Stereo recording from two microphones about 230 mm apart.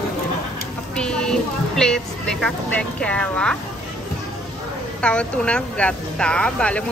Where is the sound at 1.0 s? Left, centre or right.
Centre.